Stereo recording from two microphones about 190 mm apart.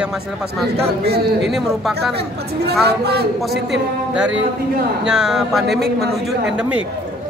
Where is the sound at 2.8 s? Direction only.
60° right (ahead or behind).